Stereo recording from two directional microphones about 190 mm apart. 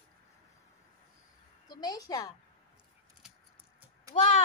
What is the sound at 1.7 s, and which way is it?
Speech, 20° left (ahead or behind).